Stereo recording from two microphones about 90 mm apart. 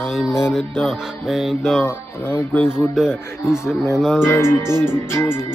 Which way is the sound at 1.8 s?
30° left (ahead or behind).